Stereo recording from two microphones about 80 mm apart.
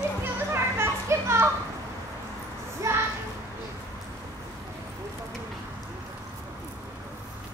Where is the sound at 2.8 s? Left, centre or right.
Right.